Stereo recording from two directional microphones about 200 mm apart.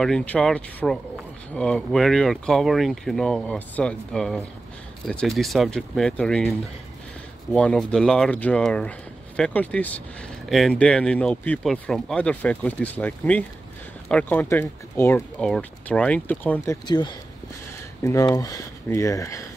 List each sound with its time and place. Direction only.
0.0 s speech: 5° left (ahead or behind)
7.5 s speech: 5° left (ahead or behind)
16.8 s speech: 20° left (ahead or behind)